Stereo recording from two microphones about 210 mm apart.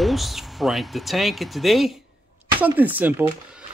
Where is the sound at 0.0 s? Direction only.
Centre (ahead or behind).